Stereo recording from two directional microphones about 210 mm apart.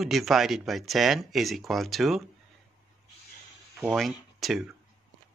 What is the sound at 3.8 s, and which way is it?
Speech, centre (ahead or behind).